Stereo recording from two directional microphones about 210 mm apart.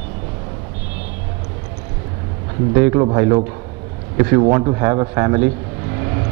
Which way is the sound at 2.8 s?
20° right (ahead or behind).